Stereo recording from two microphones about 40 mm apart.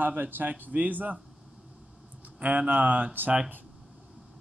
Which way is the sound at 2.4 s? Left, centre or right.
Right.